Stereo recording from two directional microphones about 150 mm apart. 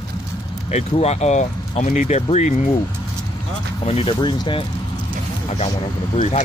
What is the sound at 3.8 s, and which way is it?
Speech, 40° left (ahead or behind).